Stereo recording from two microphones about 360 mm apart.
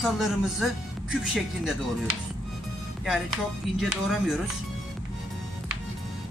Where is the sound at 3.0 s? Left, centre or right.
Centre.